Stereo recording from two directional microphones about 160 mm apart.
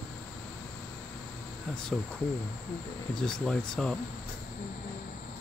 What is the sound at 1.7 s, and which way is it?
Speech, 5° left (ahead or behind).